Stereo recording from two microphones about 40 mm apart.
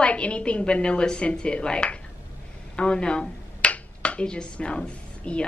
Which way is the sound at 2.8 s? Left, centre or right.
Left.